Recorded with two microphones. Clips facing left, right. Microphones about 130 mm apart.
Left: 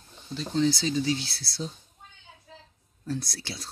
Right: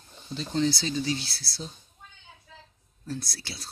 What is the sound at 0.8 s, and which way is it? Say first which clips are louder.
Speech: left 2 dB; 10° left (ahead or behind).